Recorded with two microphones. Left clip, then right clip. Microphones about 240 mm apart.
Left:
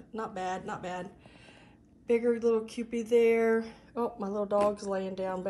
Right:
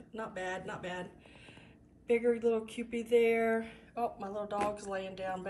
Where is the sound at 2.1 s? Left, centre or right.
Centre.